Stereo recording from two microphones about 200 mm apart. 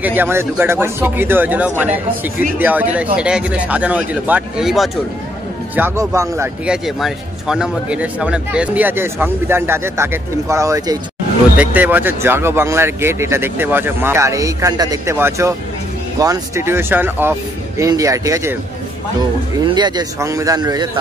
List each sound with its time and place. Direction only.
0.0 s a man's voice: 10° right (ahead or behind)
5.8 s a man's voice: 10° right (ahead or behind)
19.6 s a man's voice: 20° right (ahead or behind)